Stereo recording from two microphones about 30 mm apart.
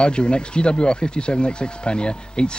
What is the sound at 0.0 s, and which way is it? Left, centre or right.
Speech, left.